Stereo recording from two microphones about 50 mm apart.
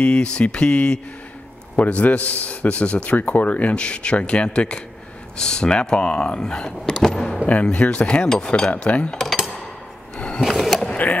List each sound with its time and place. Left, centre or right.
0.0 s a man's voice: left
7.6 s a man's voice: left
10.1 s sewing machine: centre
10.4 s skateboard: centre